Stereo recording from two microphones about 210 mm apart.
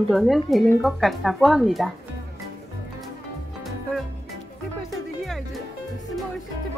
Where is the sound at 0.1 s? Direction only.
Centre (ahead or behind).